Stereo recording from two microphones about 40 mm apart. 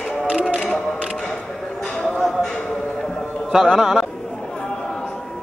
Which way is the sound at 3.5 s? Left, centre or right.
Centre.